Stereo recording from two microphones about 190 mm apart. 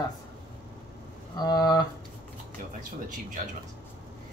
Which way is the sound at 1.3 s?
20° left (ahead or behind).